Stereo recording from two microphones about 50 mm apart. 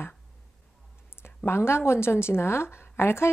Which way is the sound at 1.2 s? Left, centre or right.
Left.